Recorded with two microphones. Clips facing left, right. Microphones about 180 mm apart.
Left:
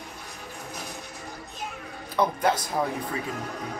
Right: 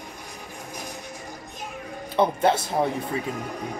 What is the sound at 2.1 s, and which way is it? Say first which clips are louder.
Speech: right 3 dB; 25° right (ahead or behind).